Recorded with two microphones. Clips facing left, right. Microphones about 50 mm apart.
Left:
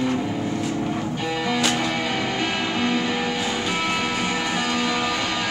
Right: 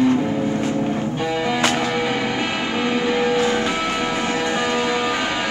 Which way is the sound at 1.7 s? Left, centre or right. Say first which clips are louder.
Right 3 dB; centre.